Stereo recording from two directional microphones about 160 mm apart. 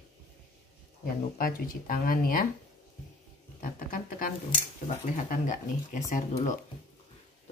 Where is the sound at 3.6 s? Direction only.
55° left (ahead or behind).